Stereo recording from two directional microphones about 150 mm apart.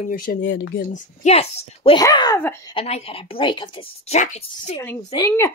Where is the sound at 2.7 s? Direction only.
40° left (ahead or behind).